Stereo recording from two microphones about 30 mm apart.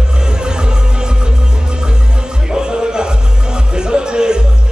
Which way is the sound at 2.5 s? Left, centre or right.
Right.